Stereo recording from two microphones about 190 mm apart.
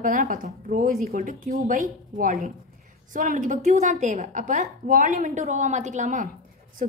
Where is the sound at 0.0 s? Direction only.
45° right (ahead or behind).